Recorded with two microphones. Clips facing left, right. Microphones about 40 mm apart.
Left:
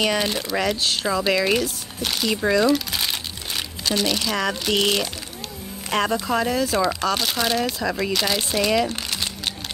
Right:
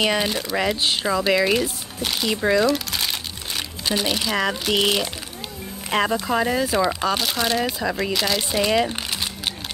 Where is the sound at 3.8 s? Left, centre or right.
Centre.